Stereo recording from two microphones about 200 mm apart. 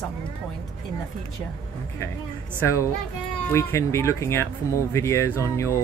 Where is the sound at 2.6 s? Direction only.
15° left (ahead or behind).